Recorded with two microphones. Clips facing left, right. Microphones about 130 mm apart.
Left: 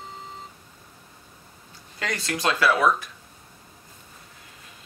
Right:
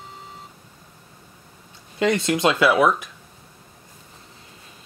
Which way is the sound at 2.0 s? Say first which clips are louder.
Right 8 dB; 25° right (ahead or behind).